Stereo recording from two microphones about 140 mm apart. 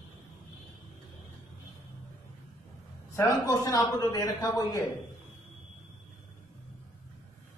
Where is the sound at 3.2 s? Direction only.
25° left (ahead or behind).